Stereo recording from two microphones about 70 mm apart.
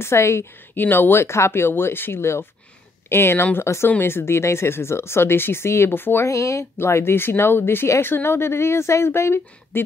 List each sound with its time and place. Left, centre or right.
0.0 s speech: left
0.7 s speech: left
6.2 s speech: left